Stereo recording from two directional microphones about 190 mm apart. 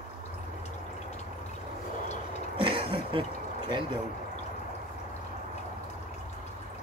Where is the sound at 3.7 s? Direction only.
25° right (ahead or behind).